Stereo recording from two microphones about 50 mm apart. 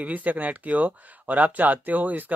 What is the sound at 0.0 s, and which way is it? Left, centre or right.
Speech, right.